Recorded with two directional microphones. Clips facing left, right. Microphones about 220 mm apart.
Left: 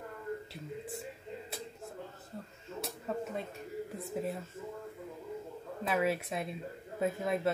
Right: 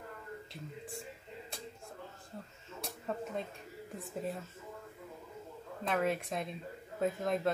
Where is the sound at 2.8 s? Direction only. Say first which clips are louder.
Left 2 dB; 5° left (ahead or behind).